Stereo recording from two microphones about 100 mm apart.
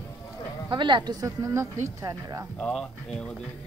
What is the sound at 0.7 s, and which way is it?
Speech, 50° right (ahead or behind).